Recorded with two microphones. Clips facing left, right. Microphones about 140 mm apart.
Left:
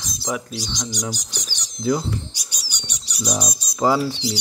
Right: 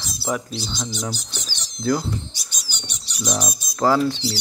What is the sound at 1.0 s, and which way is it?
Speech, 15° left (ahead or behind).